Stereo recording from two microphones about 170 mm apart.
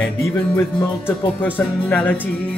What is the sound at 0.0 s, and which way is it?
Music, 15° left (ahead or behind).